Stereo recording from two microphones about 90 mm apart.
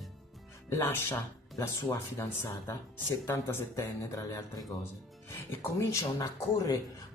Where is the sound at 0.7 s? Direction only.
25° left (ahead or behind).